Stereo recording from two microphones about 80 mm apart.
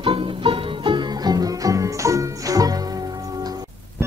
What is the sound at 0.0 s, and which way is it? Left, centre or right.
Music, right.